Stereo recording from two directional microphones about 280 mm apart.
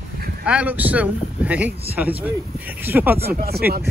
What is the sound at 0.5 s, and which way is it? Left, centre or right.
Speech, centre.